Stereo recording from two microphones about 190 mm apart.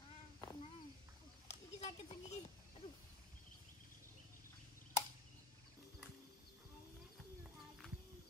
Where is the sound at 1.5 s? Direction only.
35° left (ahead or behind).